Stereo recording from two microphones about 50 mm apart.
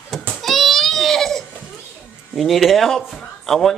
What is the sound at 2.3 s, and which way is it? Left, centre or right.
Speech, centre.